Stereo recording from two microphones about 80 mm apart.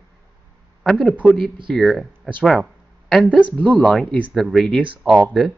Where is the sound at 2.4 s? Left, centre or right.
Centre.